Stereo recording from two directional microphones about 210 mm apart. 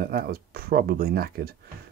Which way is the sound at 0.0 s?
45° right (ahead or behind).